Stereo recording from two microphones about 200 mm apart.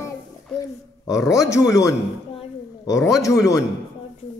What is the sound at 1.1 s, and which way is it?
Speech, 15° left (ahead or behind).